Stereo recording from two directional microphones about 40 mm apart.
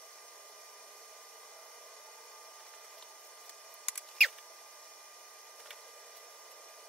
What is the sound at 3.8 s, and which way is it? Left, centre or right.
Camera, centre.